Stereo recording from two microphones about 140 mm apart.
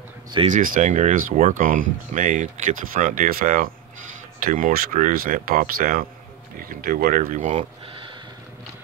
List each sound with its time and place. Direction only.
0.5 s speech: 70° right (ahead or behind)